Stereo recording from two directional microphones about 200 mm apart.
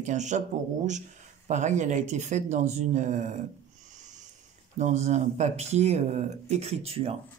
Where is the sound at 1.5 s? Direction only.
35° right (ahead or behind).